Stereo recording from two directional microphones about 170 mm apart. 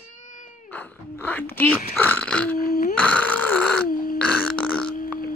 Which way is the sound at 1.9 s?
10° left (ahead or behind).